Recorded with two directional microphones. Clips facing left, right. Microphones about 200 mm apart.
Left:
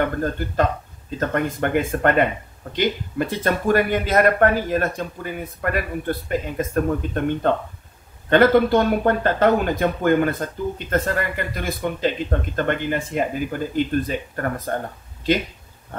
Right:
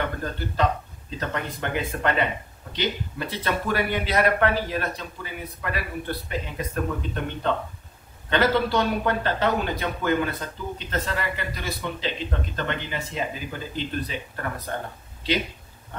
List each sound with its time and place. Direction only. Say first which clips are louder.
1.1 s speech: left 7 dB; 50° left (ahead or behind)